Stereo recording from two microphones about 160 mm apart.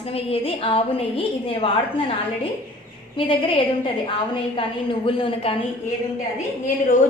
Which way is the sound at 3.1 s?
35° left (ahead or behind).